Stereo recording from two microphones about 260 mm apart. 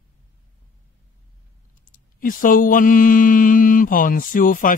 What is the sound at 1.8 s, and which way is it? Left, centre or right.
Mantra, left.